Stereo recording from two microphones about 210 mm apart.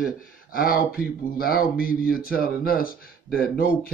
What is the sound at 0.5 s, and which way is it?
Speech, 45° left (ahead or behind).